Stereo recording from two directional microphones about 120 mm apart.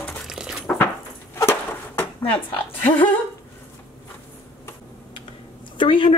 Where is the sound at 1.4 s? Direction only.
20° left (ahead or behind).